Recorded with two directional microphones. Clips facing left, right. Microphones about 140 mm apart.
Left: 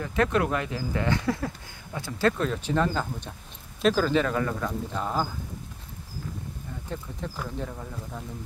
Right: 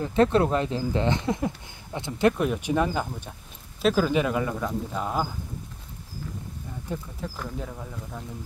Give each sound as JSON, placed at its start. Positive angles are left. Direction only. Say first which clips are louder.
{"t": 0.0, "sound": "speech", "louder": "right 4 dB", "side_deg": -30}
{"t": 6.9, "sound": "speech", "louder": "right 3 dB", "side_deg": -10}
{"t": 7.3, "sound": "speech", "louder": "left 2 dB", "side_deg": 0}